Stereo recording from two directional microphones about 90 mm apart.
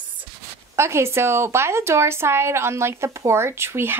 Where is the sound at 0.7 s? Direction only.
30° right (ahead or behind).